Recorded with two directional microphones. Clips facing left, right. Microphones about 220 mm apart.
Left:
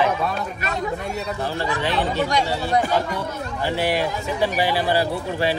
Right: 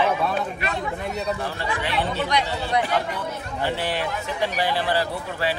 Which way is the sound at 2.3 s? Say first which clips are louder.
Left 3 dB; 45° left (ahead or behind).